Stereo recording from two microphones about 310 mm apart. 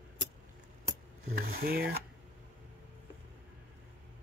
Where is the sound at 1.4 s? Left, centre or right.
Right.